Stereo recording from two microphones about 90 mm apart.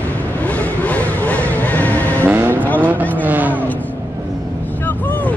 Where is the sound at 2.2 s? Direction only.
25° right (ahead or behind).